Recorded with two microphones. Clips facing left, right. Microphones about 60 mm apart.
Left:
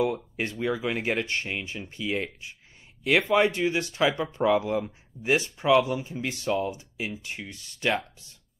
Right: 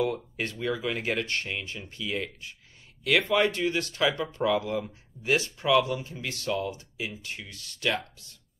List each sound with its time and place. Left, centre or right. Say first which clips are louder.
0.0 s speech: left 2 dB; centre